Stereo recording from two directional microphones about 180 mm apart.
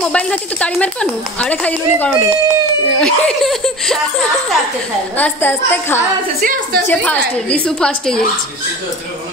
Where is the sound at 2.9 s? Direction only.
5° left (ahead or behind).